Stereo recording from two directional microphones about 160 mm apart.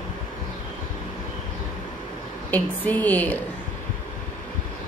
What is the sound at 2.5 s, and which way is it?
Speech, 10° left (ahead or behind).